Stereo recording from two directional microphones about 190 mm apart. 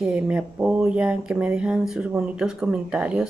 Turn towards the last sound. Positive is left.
turn(degrees=-5)  # may be behind; listen again after turning